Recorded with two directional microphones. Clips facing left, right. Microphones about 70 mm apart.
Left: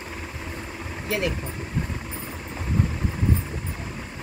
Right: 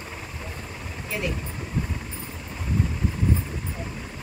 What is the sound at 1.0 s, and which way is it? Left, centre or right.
Speech, left.